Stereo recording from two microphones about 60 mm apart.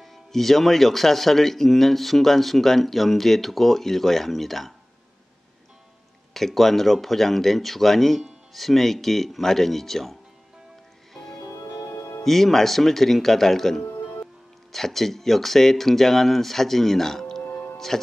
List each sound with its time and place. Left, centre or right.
0.0 s speech: centre
6.3 s speech: centre
11.4 s music: left
12.3 s speech: centre
17.4 s music: left